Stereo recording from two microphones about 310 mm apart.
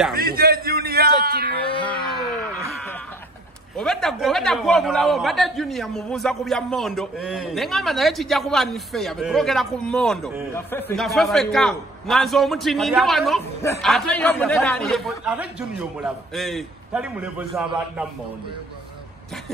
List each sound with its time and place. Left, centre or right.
0.1 s a man's voice: right
1.6 s a sound: centre
3.7 s a man's voice: centre